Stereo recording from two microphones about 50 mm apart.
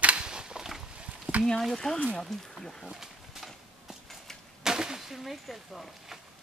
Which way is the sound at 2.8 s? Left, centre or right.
Centre.